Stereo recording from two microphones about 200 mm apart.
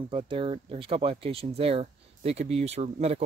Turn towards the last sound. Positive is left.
turn(degrees=-30)  # may be behind; listen again after turning